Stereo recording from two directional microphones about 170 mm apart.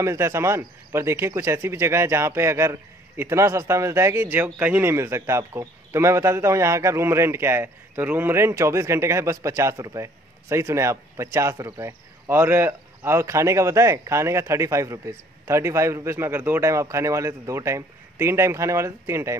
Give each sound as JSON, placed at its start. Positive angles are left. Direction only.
{"t": 0.0, "sound": "speech", "side_deg": -15}